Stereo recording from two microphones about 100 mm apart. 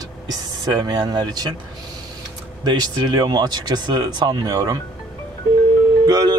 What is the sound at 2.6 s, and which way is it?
A man's voice, 45° right (ahead or behind).